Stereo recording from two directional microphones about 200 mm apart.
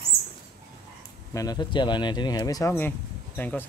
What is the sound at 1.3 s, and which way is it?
Speech, 20° left (ahead or behind).